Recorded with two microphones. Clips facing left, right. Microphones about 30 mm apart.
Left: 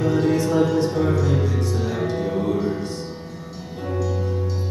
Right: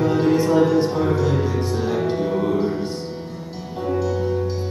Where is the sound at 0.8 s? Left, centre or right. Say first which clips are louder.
Right 1 dB; centre.